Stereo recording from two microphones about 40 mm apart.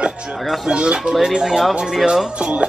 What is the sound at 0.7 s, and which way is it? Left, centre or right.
Speech, right.